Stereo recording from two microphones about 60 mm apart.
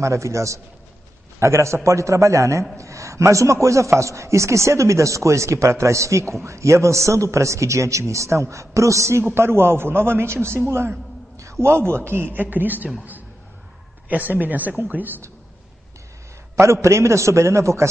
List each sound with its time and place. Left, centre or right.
0.0 s a man's voice: right
9.2 s a man's voice: right
11.6 s a man's voice: right
14.0 s a woman's voice: right
16.5 s a man's voice: right